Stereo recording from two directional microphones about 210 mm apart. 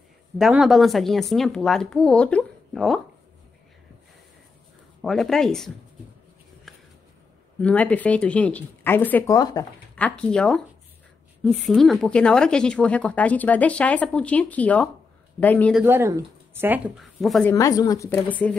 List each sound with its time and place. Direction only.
0.4 s a woman's voice: centre (ahead or behind)
5.0 s a woman's voice: centre (ahead or behind)
7.6 s speech: 5° left (ahead or behind)
9.9 s a woman's voice: 5° left (ahead or behind)
15.8 s a woman's voice: 10° right (ahead or behind); by 18.6 s 10° left (ahead or behind)